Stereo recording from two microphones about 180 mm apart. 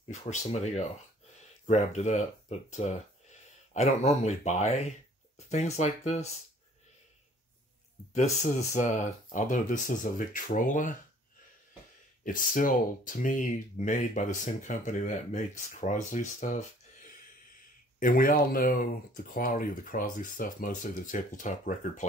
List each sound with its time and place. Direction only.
0.1 s speech: 35° left (ahead or behind)
8.1 s speech: 40° left (ahead or behind)
12.3 s speech: 50° left (ahead or behind)
17.9 s speech: 50° left (ahead or behind)